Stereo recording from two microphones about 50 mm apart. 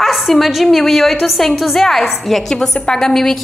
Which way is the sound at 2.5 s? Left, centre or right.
Centre.